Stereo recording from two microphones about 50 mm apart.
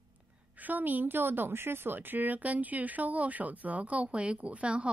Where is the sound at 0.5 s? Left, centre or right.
Right.